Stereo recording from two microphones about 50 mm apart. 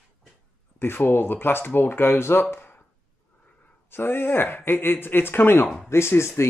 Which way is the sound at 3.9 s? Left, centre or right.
Left.